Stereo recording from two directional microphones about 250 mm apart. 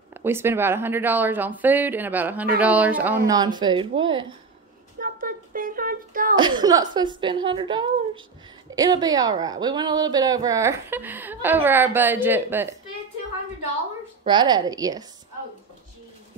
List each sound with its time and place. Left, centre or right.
0.1 s a woman's voice: centre
5.0 s a sound: right
6.3 s a woman's voice: centre
14.2 s a woman's voice: centre